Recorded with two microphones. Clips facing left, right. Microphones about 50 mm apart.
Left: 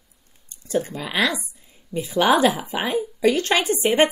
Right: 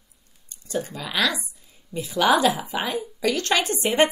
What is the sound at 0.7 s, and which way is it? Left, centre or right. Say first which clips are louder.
A woman's voice: left 4 dB; left.